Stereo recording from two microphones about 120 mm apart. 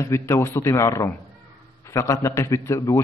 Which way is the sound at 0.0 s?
25° left (ahead or behind).